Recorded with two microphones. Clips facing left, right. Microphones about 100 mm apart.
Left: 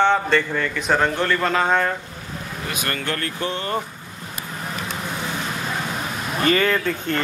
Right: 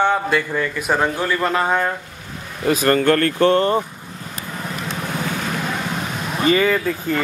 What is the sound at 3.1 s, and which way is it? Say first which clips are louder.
Speech: right 11 dB; 55° right (ahead or behind).